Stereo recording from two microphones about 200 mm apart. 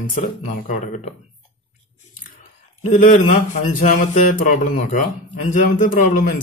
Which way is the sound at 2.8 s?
40° left (ahead or behind).